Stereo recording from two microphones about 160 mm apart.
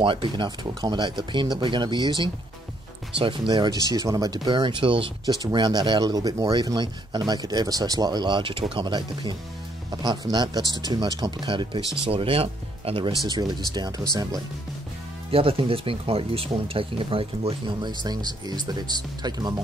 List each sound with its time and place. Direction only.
0.0 s speech: 30° right (ahead or behind)
10.6 s speech: 25° left (ahead or behind)
10.9 s speech: 25° right (ahead or behind)
13.3 s speech: 25° right (ahead or behind)
15.3 s speech: 35° right (ahead or behind)